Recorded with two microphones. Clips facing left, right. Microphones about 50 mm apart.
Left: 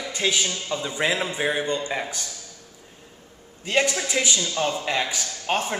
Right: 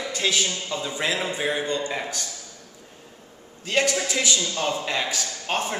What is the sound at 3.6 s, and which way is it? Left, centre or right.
Speech, centre.